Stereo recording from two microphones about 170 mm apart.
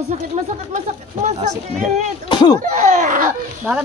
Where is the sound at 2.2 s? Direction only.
25° left (ahead or behind).